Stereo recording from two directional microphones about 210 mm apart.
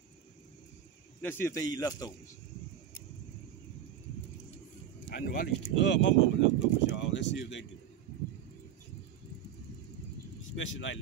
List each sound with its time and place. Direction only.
1.2 s speech: 10° left (ahead or behind)
5.1 s speech: 50° left (ahead or behind)
10.5 s speech: 65° left (ahead or behind)